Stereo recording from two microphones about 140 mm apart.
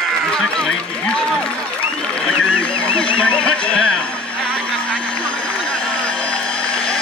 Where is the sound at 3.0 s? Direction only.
5° left (ahead or behind).